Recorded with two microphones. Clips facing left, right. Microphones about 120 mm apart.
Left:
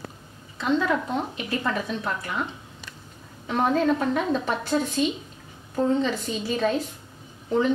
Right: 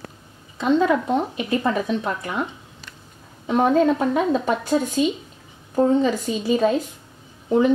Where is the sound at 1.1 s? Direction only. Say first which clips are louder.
Right 6 dB; 20° right (ahead or behind).